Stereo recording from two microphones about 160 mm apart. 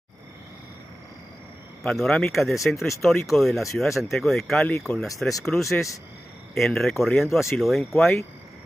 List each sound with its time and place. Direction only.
1.8 s speech: centre (ahead or behind)
5.0 s speech: 20° left (ahead or behind)
5.4 s speech: centre (ahead or behind)